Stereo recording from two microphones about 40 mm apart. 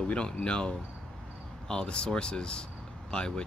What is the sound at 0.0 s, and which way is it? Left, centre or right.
Speech, left.